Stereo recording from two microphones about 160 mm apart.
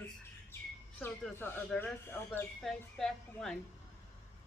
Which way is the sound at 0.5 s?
15° left (ahead or behind).